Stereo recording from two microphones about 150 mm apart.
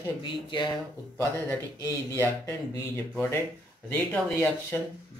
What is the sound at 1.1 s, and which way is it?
Speech, 10° left (ahead or behind).